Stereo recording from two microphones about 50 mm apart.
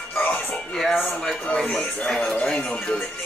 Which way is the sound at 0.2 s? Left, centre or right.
Left.